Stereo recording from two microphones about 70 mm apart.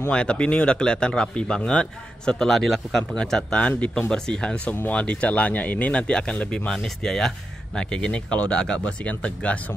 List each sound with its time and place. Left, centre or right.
0.1 s speech: centre
6.7 s speech: centre